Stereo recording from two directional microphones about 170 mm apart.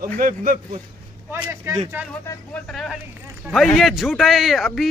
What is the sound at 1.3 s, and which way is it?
Speech, 15° right (ahead or behind).